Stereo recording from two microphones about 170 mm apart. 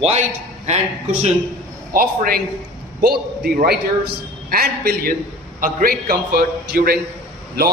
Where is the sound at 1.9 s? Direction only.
55° right (ahead or behind).